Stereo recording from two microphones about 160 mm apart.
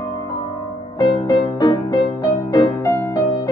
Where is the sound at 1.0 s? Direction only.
20° left (ahead or behind).